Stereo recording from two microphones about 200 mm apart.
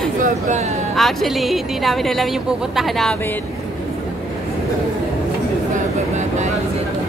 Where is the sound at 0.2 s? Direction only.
35° right (ahead or behind).